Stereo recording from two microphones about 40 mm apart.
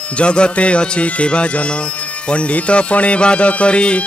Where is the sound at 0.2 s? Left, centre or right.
Left.